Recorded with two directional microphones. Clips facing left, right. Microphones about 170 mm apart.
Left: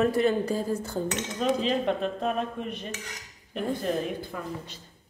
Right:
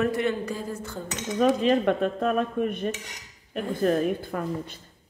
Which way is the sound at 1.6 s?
55° right (ahead or behind).